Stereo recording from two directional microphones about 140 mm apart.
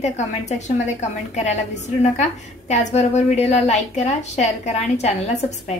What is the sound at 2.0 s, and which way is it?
A woman's voice, 55° left (ahead or behind).